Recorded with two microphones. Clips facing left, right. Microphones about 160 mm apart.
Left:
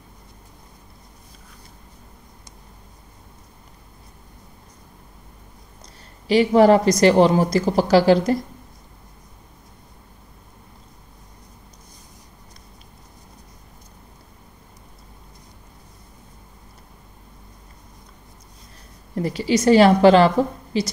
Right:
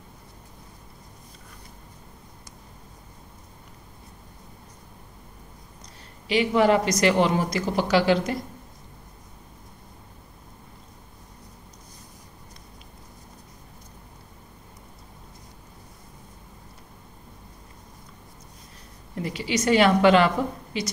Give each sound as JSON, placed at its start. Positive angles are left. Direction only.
{"t": 6.2, "sound": "a woman's voice", "side_deg": 40}
{"t": 19.1, "sound": "a woman's voice", "side_deg": 40}